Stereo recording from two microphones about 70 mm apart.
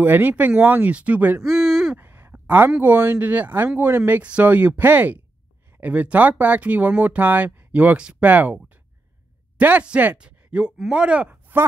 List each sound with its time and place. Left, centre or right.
0.0 s speech: right
1.4 s a sound: centre
2.0 s a sound: right
2.8 s speech: right
4.2 s speech: centre
9.6 s speech: right